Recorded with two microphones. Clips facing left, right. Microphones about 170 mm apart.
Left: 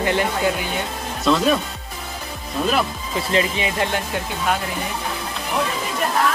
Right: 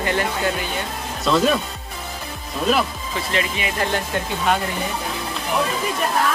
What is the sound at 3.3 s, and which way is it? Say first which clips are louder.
Speech: left 4 dB; 30° left (ahead or behind).